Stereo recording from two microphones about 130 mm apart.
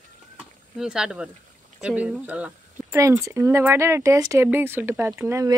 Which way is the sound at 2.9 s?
25° right (ahead or behind).